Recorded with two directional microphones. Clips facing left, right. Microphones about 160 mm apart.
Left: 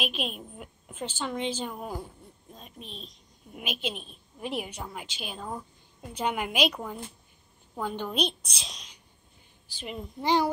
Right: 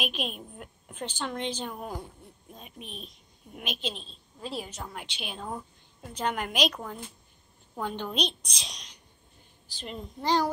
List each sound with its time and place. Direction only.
0.0 s a woman's voice: centre (ahead or behind)
3.5 s a woman's voice: 5° left (ahead or behind)